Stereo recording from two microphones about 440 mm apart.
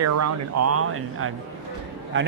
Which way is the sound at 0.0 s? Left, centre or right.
Right.